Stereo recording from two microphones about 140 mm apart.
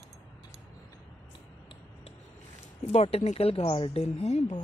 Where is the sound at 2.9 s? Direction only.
45° left (ahead or behind).